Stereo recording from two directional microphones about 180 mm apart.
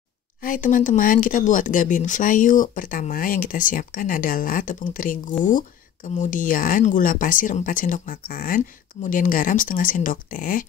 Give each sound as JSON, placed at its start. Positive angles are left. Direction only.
{"t": 0.4, "sound": "speech", "side_deg": 50}